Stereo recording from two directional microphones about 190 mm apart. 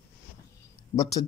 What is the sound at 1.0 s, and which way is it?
Speech, 20° left (ahead or behind).